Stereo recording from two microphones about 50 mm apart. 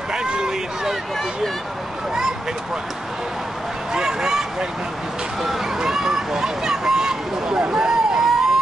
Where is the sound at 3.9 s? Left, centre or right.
Centre.